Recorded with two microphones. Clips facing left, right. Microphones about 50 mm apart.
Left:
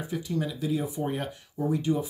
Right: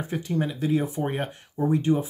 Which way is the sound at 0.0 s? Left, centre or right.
Right.